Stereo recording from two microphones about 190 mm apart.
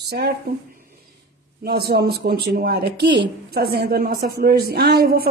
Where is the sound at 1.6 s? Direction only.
55° right (ahead or behind).